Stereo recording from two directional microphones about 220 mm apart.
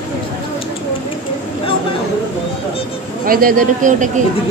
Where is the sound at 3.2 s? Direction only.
40° right (ahead or behind).